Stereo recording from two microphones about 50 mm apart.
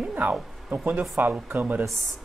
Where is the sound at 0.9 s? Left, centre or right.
Right.